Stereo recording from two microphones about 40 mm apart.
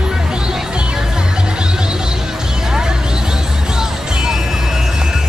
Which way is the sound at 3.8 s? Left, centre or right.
Centre.